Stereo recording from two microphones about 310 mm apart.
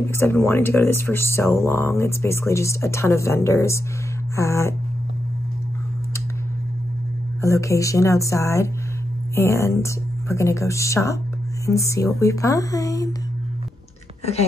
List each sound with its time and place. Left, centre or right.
0.0 s speech: centre
7.4 s speech: centre